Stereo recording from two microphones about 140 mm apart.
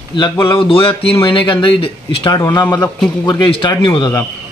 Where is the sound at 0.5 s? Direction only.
40° left (ahead or behind).